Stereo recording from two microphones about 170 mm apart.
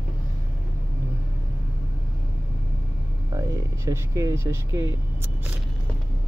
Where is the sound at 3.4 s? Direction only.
15° right (ahead or behind).